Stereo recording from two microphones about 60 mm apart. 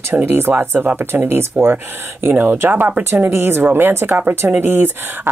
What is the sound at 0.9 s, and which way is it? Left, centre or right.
Speech, right.